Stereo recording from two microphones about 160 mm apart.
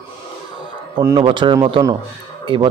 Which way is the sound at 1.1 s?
30° right (ahead or behind).